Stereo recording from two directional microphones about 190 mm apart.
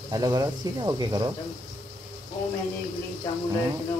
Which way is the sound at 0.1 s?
20° right (ahead or behind).